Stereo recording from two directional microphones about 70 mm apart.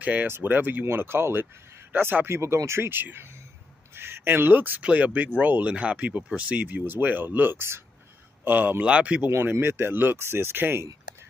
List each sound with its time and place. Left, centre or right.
0.0 s speech: right
8.8 s speech: centre
9.3 s speech: right